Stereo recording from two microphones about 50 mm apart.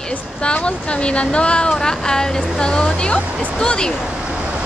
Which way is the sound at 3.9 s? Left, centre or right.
Centre.